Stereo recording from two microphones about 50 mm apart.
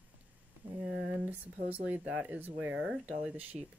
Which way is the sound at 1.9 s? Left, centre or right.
Right.